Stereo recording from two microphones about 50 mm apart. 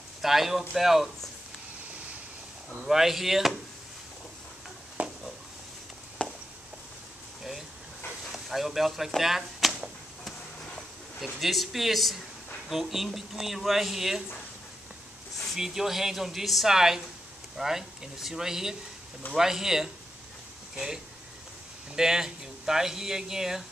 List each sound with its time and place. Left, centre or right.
0.2 s speech: centre
2.8 s speech: centre
5.0 s a sound: right
6.2 s a sound: left
8.3 s speech: centre
11.4 s speech: centre
15.5 s speech: centre